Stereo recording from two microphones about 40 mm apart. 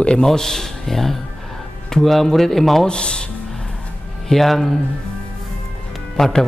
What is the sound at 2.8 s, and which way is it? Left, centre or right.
Speech, left.